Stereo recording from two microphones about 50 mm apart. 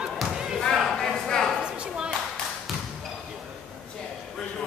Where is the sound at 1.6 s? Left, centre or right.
Centre.